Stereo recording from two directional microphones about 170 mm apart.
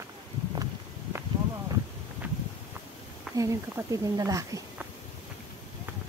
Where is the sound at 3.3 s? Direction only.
20° right (ahead or behind).